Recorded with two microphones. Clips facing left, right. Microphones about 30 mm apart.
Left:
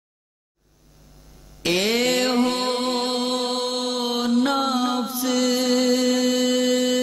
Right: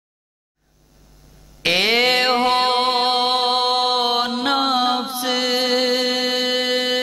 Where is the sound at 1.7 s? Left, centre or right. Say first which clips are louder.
Right 4 dB; right.